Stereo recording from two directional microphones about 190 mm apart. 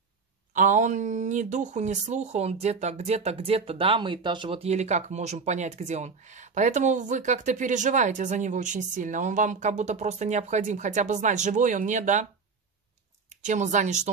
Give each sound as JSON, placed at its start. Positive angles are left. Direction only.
{"t": 0.5, "sound": "speech", "side_deg": -40}
{"t": 13.4, "sound": "speech", "side_deg": -40}